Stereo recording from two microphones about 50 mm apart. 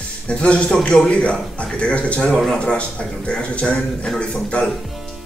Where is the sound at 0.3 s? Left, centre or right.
Left.